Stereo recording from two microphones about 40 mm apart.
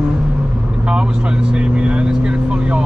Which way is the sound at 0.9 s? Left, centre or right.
Right.